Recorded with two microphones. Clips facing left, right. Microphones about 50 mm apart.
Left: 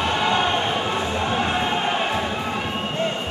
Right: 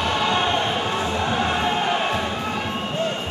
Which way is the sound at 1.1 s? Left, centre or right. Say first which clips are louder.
Even; centre.